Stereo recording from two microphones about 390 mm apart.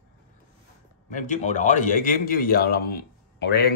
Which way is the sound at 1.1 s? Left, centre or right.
Centre.